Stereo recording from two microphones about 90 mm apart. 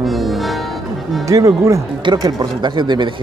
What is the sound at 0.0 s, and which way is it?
Music, centre (ahead or behind).